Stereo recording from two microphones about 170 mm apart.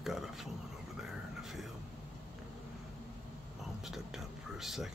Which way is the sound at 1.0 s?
Centre (ahead or behind).